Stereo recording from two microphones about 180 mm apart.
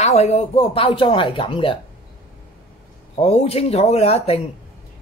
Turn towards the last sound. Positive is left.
turn(degrees=35)  # may be behind; listen again after turning